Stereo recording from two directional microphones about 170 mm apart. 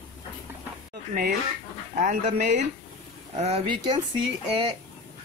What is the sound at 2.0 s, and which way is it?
Speech, 45° right (ahead or behind).